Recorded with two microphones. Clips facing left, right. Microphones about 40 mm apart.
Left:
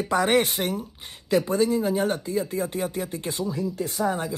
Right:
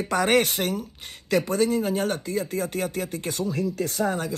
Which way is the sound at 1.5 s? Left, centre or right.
Right.